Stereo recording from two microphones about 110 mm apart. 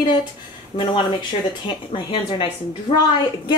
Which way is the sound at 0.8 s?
45° left (ahead or behind).